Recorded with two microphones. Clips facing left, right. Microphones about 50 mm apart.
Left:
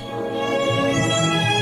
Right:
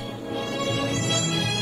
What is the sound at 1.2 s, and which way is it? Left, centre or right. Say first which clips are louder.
Music: left 7 dB; left.